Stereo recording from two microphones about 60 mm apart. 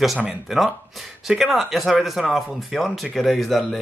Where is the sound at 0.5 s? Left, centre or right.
Centre.